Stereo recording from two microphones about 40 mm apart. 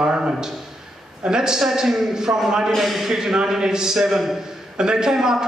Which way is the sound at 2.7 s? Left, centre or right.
Centre.